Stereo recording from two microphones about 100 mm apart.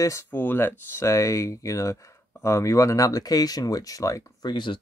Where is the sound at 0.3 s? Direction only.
20° left (ahead or behind); by 4.5 s 35° left (ahead or behind).